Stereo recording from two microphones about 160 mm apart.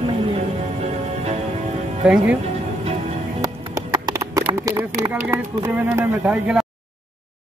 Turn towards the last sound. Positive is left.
turn(degrees=-10)  # may be behind; listen again after turning